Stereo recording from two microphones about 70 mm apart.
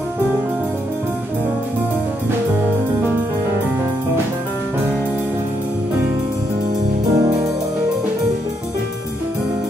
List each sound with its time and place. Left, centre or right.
7.2 s music: right